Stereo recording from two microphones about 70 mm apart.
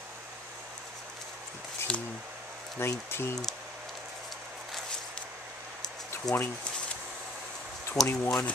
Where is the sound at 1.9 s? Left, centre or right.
Centre.